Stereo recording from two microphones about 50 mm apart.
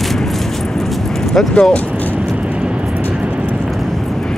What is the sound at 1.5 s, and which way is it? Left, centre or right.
Speech, left.